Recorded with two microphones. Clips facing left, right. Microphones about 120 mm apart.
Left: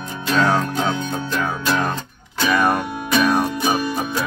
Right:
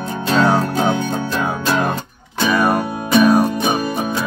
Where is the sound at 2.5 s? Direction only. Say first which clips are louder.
Right 2 dB; 10° right (ahead or behind).